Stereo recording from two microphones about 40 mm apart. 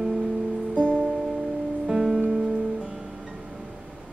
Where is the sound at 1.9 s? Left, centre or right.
Centre.